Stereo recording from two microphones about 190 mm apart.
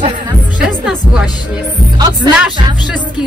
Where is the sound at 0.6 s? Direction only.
5° right (ahead or behind).